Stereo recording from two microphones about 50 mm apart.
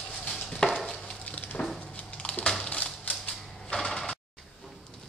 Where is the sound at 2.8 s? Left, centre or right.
Left.